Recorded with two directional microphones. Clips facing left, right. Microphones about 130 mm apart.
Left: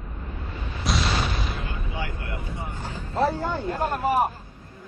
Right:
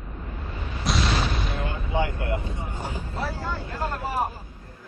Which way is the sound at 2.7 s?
10° right (ahead or behind).